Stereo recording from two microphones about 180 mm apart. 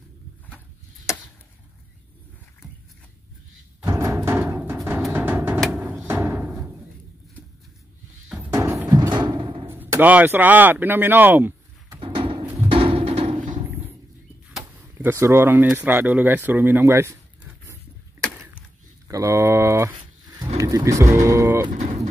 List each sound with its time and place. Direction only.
1.1 s chop: 15° left (ahead or behind)
3.8 s music: 15° right (ahead or behind)
5.6 s music: centre (ahead or behind)
8.5 s music: 15° right (ahead or behind)
9.7 s speech: 10° right (ahead or behind)
12.0 s a sound: 30° right (ahead or behind)
12.6 s music: 30° right (ahead or behind)
14.5 s speech: 10° right (ahead or behind)
19.0 s speech: 20° right (ahead or behind)
21.7 s music: 40° right (ahead or behind)